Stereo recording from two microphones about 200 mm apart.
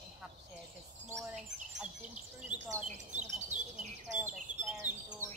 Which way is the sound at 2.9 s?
35° right (ahead or behind).